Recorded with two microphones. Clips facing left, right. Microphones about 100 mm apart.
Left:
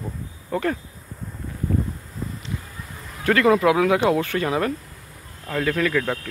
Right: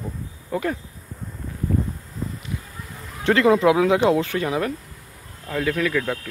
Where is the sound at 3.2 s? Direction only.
20° right (ahead or behind); by 6.1 s 5° right (ahead or behind).